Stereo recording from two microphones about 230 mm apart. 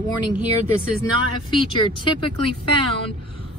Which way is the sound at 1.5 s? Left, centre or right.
Left.